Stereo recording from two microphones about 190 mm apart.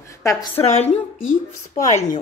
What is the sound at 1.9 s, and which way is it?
Speech, 35° left (ahead or behind).